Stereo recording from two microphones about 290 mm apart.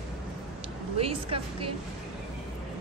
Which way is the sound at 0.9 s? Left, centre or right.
Centre.